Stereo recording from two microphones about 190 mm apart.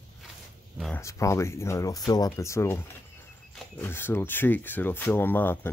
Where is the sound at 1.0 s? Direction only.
15° left (ahead or behind).